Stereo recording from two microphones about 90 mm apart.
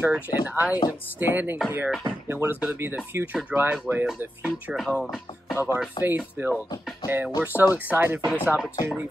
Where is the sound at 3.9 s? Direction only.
30° right (ahead or behind).